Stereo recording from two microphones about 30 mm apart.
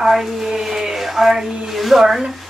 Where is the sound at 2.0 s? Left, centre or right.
Centre.